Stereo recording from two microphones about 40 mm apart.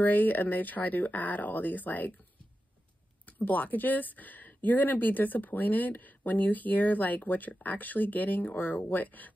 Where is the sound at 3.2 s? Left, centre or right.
Left.